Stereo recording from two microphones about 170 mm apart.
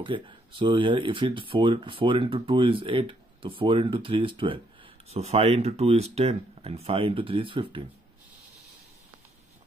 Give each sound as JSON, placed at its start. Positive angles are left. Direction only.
{"t": 0.0, "sound": "speech", "side_deg": -30}